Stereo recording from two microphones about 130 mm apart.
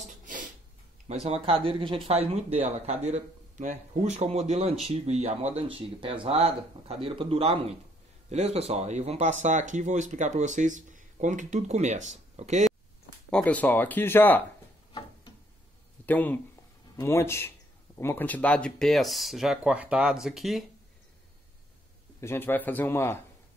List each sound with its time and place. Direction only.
0.1 s a sound: 90° right
1.0 s speech: 55° right (ahead or behind)
13.3 s speech: 10° left (ahead or behind)
14.9 s tick-tock: 35° left (ahead or behind)
16.1 s speech: 15° left (ahead or behind)
22.2 s speech: 15° left (ahead or behind)